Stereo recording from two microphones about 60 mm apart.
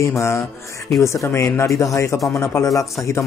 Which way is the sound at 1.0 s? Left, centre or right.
Left.